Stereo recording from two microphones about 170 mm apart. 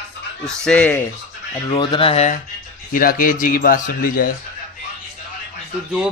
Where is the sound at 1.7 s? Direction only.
30° left (ahead or behind).